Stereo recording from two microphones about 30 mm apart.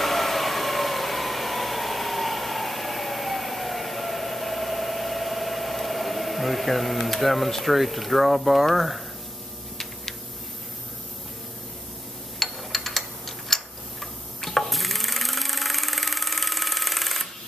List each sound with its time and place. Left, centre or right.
0.0 s vehicle: centre
8.6 s speech: centre
12.4 s a sound: centre
13.5 s tick-tock: centre
14.4 s a sound: centre
14.7 s engine: centre